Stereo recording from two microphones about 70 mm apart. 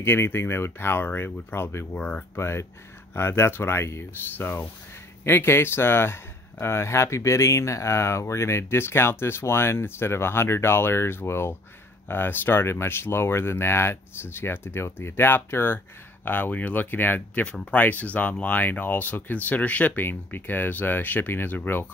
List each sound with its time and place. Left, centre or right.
0.0 s speech: left
2.0 s speech: left
2.3 s speech: left
17.4 s speech: centre